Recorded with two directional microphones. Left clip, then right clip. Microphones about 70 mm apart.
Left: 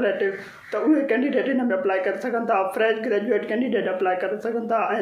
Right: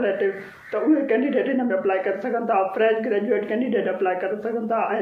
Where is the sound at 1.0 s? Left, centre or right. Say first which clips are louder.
Right 1 dB; left.